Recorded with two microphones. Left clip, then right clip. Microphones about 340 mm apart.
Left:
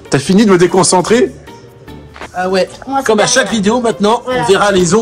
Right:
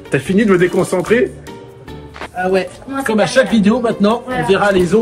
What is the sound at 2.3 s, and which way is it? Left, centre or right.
Speech, centre.